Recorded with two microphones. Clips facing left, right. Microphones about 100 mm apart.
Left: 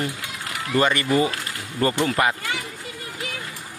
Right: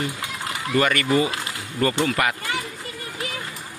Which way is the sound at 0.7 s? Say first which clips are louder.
Even; 25° left (ahead or behind).